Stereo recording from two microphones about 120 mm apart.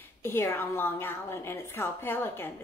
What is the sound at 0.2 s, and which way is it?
A woman's voice, 20° left (ahead or behind).